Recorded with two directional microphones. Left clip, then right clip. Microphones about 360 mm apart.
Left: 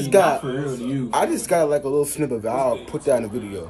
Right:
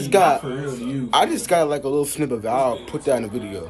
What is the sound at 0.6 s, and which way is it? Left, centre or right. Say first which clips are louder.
Speech: left 1 dB; centre.